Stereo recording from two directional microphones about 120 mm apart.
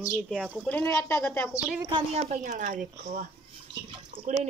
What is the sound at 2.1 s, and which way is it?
A woman's voice, 70° right (ahead or behind).